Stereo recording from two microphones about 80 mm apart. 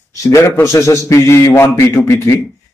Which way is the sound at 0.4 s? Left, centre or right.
Left.